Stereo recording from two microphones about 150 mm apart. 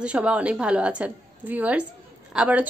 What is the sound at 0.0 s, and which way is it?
A woman's voice, 10° right (ahead or behind).